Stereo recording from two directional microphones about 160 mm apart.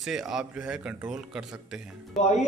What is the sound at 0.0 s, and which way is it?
Speech, 5° right (ahead or behind).